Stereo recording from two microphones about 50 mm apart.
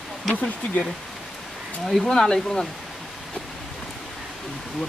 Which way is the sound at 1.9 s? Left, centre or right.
Centre.